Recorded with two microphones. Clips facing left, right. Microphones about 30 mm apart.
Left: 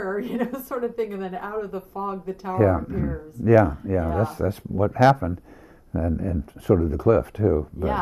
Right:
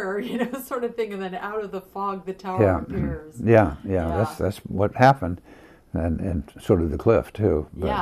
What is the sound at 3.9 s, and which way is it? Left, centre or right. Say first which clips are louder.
A woman's voice: even; right.